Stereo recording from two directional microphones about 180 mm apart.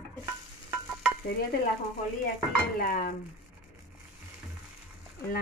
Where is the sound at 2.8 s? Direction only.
55° left (ahead or behind).